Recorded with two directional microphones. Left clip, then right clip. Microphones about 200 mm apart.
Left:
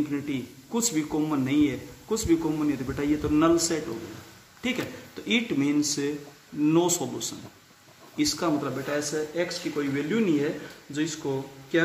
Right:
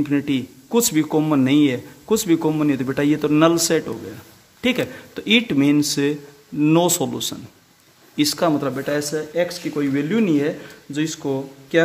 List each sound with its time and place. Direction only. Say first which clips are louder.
0.1 s speech: right 10 dB; 45° right (ahead or behind)